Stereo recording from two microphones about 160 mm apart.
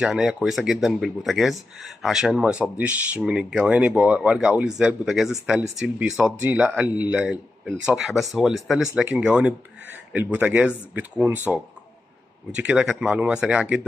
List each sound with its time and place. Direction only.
0.0 s speech: 5° right (ahead or behind)